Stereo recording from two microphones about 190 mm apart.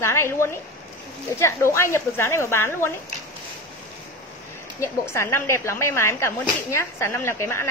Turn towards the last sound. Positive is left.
turn(degrees=15)  # may be behind; listen again after turning